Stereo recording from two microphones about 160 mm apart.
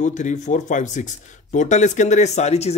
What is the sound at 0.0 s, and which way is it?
A man's voice, 50° left (ahead or behind).